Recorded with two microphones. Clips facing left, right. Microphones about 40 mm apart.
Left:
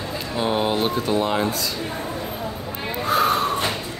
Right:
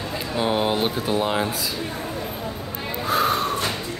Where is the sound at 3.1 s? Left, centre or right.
Centre.